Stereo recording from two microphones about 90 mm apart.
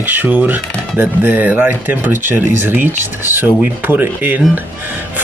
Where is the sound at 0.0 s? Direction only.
20° right (ahead or behind).